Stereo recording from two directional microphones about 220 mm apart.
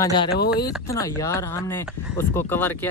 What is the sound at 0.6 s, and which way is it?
Speech, 15° left (ahead or behind).